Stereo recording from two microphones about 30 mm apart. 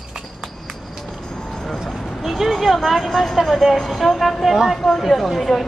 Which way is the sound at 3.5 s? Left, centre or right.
Centre.